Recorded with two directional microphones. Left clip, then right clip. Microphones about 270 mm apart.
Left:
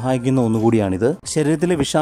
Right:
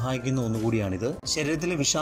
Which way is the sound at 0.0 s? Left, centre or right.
Left.